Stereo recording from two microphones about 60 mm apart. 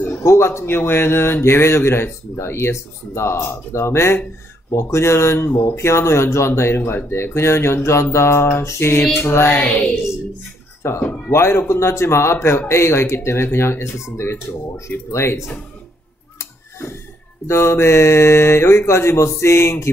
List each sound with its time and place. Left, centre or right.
0.0 s speech: left
9.2 s female singing: left
9.6 s speech: left
11.0 s speech: left
11.3 s speech: left
17.5 s speech: left